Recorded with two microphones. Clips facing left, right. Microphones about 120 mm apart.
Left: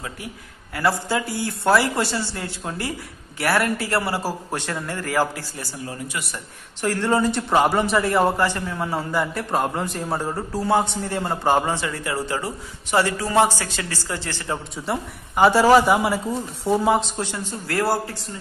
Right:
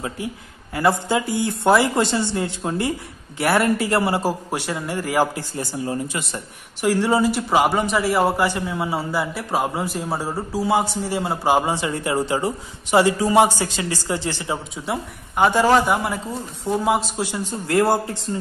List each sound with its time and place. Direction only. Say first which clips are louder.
0.7 s a man's voice: right 3 dB; 20° right (ahead or behind)
6.8 s a man's voice: right 2 dB; 15° right (ahead or behind)
14.9 s speech: even; centre (ahead or behind)
17.2 s a man's voice: right 3 dB; 15° right (ahead or behind)